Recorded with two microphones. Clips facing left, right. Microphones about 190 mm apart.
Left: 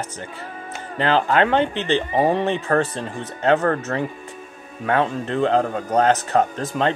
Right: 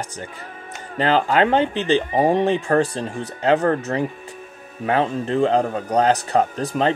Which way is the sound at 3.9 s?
25° right (ahead or behind).